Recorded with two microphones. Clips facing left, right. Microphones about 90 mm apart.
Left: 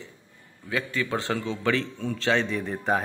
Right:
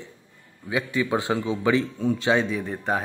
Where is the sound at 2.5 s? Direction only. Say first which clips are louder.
Even; centre (ahead or behind).